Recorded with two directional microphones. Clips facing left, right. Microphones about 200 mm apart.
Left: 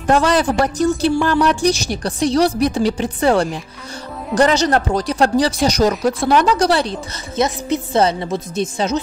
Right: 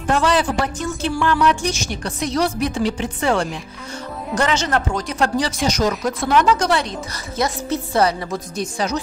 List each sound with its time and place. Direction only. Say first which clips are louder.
0.0 s speech: left 3 dB; 40° left (ahead or behind)
7.3 s speech: left 3 dB; 20° left (ahead or behind)